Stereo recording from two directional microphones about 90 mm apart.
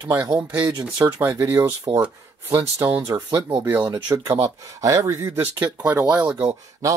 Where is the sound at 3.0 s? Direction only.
45° right (ahead or behind).